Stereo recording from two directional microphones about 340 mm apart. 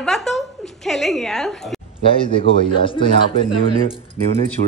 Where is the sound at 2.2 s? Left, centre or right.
Centre.